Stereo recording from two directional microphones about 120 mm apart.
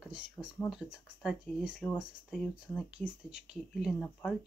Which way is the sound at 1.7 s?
10° left (ahead or behind).